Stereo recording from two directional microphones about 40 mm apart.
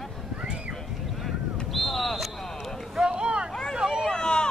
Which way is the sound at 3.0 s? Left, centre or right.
Right.